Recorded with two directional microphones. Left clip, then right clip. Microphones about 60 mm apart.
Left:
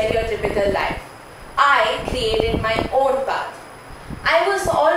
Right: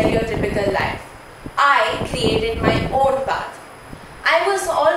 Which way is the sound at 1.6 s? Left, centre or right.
Right.